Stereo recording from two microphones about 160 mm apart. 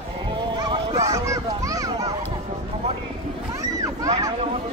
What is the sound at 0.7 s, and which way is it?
Children playing, 25° right (ahead or behind).